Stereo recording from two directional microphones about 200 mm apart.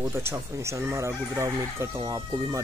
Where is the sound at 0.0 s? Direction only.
15° right (ahead or behind).